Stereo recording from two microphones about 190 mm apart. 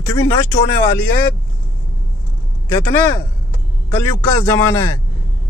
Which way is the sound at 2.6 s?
15° left (ahead or behind).